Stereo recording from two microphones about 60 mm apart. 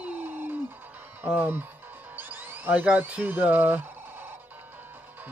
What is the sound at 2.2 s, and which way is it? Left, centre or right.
Music, right.